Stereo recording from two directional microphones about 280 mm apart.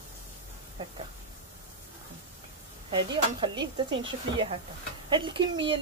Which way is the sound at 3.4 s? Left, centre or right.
Centre.